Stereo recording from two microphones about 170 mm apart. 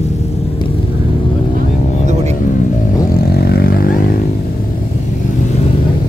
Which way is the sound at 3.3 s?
70° left (ahead or behind).